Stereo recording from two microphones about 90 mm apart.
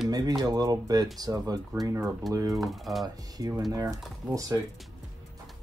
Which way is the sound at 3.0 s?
45° right (ahead or behind).